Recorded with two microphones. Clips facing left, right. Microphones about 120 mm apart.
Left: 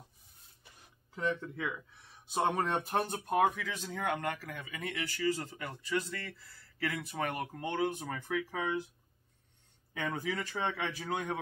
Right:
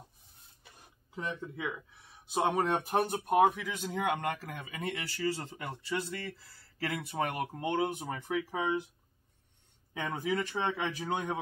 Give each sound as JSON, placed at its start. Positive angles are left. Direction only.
{"t": 1.1, "sound": "speech", "side_deg": -15}
{"t": 9.9, "sound": "speech", "side_deg": -20}